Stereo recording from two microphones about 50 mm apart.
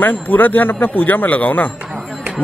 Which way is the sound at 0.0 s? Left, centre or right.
Left.